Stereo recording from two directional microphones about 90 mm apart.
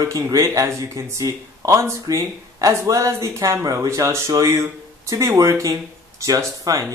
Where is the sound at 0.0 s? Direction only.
35° right (ahead or behind).